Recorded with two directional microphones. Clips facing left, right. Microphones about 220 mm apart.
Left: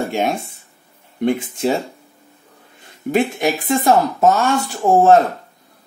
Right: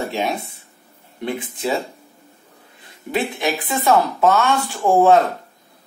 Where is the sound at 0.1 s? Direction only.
45° left (ahead or behind).